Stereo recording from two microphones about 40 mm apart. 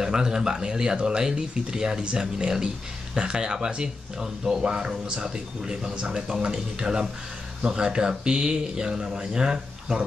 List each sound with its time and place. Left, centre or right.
0.0 s speech: centre